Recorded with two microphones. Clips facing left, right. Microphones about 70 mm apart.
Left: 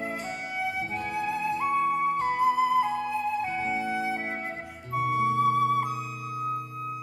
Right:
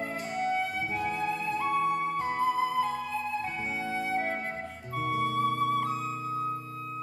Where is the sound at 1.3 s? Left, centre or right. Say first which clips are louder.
Left 6 dB; centre.